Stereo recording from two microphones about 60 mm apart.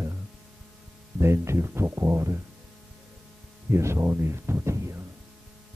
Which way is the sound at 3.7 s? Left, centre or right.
Right.